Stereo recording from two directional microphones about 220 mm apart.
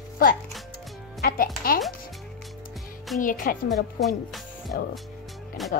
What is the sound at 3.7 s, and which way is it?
Speech, centre (ahead or behind).